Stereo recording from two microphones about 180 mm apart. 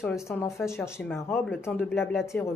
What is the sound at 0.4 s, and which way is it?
Speech, 15° left (ahead or behind).